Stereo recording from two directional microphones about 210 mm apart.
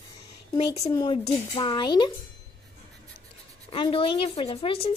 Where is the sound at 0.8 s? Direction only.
15° left (ahead or behind).